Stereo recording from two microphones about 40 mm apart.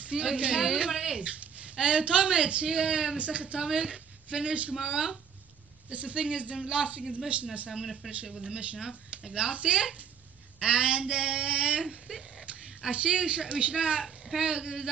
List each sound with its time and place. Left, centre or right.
0.0 s a man's voice: right
4.7 s speech: centre
5.9 s a man's voice: right
7.7 s speech: centre
8.4 s a man's voice: right
8.7 s speech: centre
9.3 s a man's voice: right
12.1 s a sound: centre
12.9 s a man's voice: right
14.0 s a sound: centre
14.4 s a man's voice: right